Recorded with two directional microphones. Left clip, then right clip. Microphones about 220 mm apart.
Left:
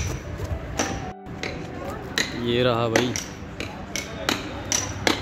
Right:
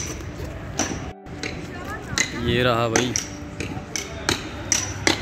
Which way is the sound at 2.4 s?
Centre (ahead or behind).